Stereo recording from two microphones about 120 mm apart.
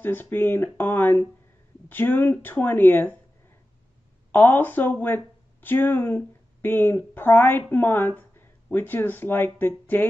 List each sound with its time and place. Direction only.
0.0 s speech: 15° left (ahead or behind)
4.3 s speech: 15° left (ahead or behind)